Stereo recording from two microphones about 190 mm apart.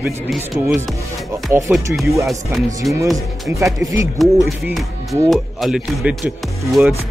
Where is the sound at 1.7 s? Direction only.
10° right (ahead or behind).